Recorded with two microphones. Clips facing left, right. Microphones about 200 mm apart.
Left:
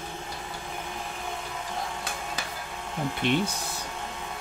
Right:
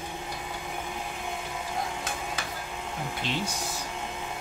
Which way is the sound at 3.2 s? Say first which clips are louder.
Left 8 dB; 60° left (ahead or behind).